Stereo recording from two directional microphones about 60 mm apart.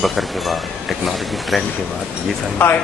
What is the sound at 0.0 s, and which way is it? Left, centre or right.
Speech, centre.